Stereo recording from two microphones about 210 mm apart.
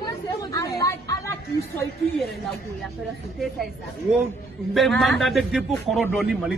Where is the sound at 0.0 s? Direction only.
15° left (ahead or behind).